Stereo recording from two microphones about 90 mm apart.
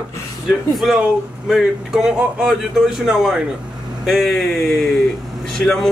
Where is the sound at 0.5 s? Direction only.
Centre (ahead or behind).